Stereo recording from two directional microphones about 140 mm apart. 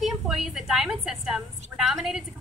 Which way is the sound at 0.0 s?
Centre (ahead or behind).